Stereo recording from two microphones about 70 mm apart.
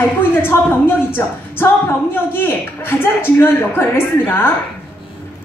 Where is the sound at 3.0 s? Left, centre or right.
Left.